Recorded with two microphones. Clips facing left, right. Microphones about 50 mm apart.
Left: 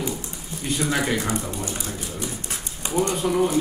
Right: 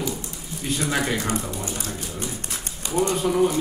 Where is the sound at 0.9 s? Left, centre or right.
Centre.